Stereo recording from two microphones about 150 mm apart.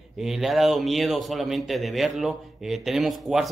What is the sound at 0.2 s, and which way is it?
A man's voice, centre (ahead or behind).